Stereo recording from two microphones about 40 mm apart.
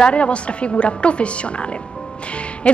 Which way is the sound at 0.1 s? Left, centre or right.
Left.